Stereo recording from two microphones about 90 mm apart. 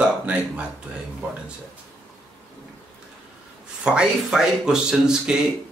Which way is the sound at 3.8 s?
10° right (ahead or behind).